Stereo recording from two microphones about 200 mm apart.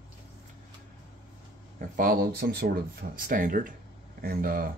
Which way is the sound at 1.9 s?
45° right (ahead or behind).